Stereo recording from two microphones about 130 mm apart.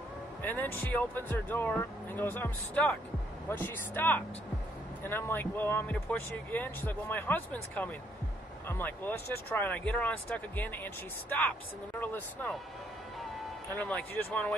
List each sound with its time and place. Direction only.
0.4 s speech: 15° left (ahead or behind)
13.7 s speech: 10° left (ahead or behind)